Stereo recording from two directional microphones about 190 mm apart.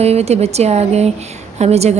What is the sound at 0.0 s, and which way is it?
Speech, 35° right (ahead or behind).